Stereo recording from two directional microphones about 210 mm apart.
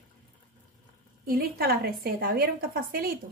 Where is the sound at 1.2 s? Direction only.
45° right (ahead or behind).